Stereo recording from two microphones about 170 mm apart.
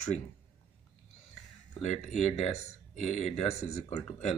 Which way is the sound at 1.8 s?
45° left (ahead or behind).